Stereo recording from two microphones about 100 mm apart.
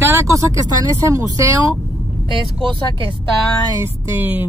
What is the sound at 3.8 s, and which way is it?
Speech, 20° right (ahead or behind).